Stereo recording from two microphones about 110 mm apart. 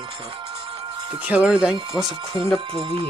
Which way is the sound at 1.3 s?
10° right (ahead or behind).